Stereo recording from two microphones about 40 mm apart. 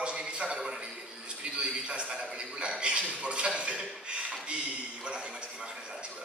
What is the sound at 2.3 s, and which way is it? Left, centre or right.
A man's voice, right.